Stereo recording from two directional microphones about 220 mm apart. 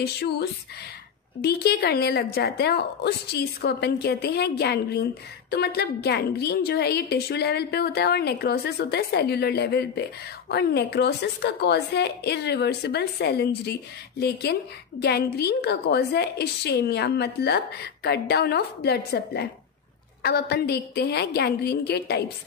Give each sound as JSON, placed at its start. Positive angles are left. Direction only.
{"t": 0.0, "sound": "a woman's voice", "side_deg": 45}